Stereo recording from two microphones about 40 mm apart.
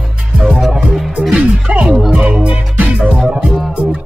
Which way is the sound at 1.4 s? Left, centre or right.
Right.